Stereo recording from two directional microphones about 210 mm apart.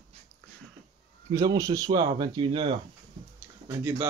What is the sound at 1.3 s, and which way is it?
Speech, 15° right (ahead or behind).